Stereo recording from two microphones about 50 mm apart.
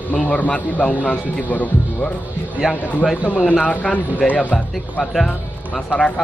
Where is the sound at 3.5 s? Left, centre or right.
Left.